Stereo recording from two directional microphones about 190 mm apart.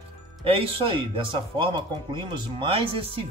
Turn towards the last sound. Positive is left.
turn(degrees=-30)  # may be behind; listen again after turning